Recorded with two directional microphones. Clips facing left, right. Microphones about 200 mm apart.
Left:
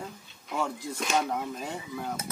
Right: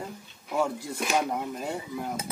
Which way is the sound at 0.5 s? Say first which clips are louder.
Right 4 dB; 10° right (ahead or behind).